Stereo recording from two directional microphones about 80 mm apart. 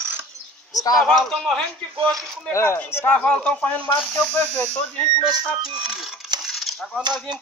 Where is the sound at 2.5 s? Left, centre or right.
Left.